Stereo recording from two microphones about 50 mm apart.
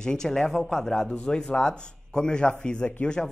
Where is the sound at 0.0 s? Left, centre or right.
Centre.